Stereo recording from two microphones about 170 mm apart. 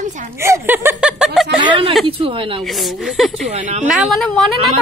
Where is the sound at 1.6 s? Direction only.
30° right (ahead or behind).